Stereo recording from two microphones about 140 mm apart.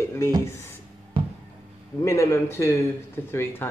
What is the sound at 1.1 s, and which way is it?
Music, 40° right (ahead or behind).